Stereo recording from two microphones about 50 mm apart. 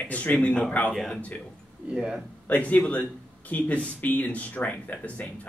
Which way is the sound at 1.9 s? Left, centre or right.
Centre.